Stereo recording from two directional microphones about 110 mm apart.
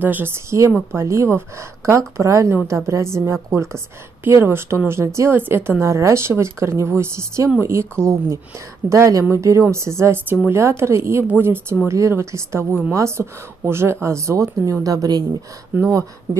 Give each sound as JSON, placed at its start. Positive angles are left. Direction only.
{"t": 0.0, "sound": "a woman's voice", "side_deg": -20}
{"t": 15.7, "sound": "a woman's voice", "side_deg": -20}